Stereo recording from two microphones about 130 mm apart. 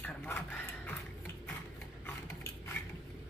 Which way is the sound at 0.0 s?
15° left (ahead or behind).